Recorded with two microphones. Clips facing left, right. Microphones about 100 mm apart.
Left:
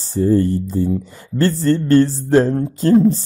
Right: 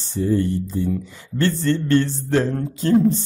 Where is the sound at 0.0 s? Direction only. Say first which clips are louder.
Left 5 dB; 40° left (ahead or behind).